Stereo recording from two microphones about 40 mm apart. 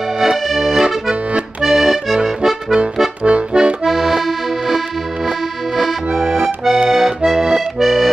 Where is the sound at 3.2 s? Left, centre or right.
Right.